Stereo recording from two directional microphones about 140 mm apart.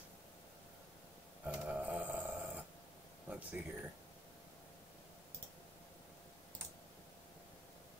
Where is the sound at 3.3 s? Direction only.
10° right (ahead or behind).